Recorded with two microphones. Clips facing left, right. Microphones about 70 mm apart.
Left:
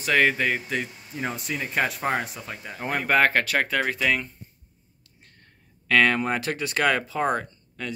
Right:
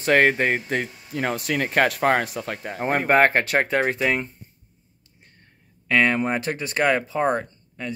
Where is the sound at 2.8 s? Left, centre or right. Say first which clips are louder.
Right 4 dB; right.